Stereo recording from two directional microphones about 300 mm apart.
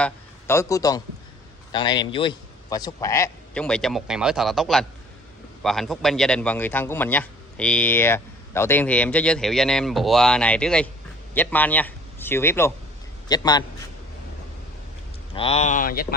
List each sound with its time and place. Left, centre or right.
0.0 s a man's voice: centre
15.3 s speech: centre